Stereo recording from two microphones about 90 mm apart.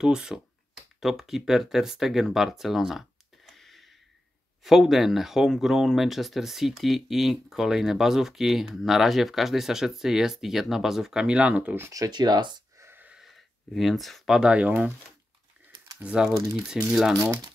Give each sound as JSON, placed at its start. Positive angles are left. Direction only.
{"t": 0.0, "sound": "speech", "side_deg": -5}
{"t": 11.9, "sound": "speech", "side_deg": -45}
{"t": 12.7, "sound": "a sound", "side_deg": -30}
{"t": 13.7, "sound": "speech", "side_deg": 0}
{"t": 16.0, "sound": "speech", "side_deg": -10}